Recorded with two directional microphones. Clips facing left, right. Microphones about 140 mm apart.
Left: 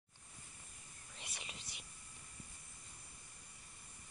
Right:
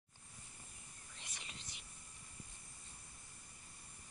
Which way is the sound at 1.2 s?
10° left (ahead or behind).